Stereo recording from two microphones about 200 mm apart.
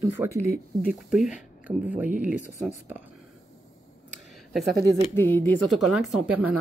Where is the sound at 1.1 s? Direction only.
Centre (ahead or behind).